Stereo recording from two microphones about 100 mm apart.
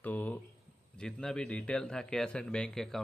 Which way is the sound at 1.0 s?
5° left (ahead or behind).